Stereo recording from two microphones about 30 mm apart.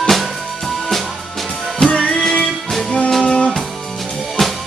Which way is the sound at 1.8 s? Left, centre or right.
Left.